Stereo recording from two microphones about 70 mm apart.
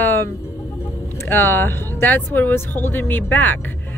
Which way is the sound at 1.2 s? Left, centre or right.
Left.